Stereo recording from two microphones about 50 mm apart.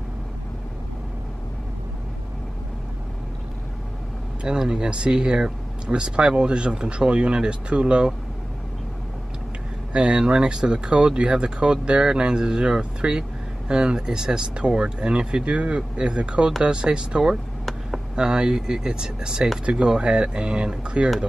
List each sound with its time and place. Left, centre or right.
4.4 s speech: centre
9.9 s speech: centre